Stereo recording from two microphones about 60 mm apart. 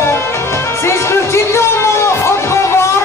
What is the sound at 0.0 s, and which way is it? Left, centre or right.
Music, left.